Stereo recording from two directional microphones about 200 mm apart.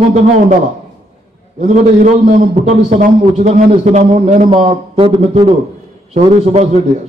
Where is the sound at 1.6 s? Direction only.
35° right (ahead or behind).